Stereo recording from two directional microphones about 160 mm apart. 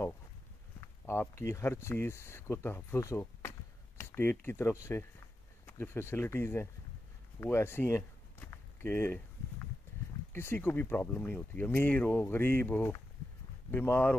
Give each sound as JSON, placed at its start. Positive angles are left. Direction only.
{"t": 0.7, "sound": "a sound", "side_deg": 15}
{"t": 1.4, "sound": "speech", "side_deg": 15}
{"t": 7.3, "sound": "walk", "side_deg": 15}
{"t": 10.3, "sound": "speech", "side_deg": 15}